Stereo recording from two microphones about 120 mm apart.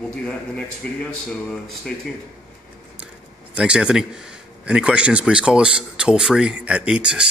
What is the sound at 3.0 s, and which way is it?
A man's voice, 10° right (ahead or behind).